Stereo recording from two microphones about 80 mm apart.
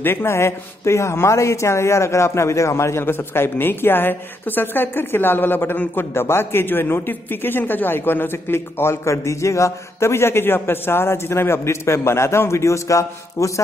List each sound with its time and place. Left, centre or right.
0.0 s speech: left